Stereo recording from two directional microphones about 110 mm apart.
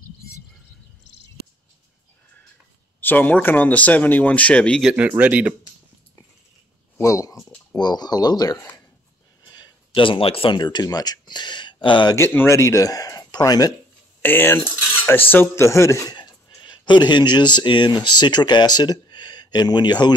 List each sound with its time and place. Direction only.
3.0 s speech: 15° left (ahead or behind)
4.9 s speech: 15° right (ahead or behind)
7.0 s speech: 30° left (ahead or behind); by 12.2 s 45° left (ahead or behind)
12.2 s speech: 20° left (ahead or behind)
14.2 s cutlery: 20° left (ahead or behind)
16.2 s speech: 45° left (ahead or behind)